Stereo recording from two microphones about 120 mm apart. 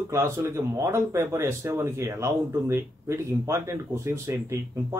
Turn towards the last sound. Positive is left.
turn(degrees=-20)  # may be behind; listen again after turning